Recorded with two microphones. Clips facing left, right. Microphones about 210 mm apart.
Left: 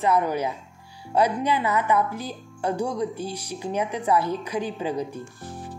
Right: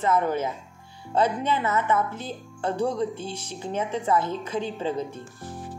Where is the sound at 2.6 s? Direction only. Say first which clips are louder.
Even; 15° left (ahead or behind).